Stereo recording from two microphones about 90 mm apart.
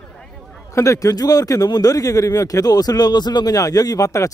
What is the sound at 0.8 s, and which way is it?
Speech, 40° left (ahead or behind).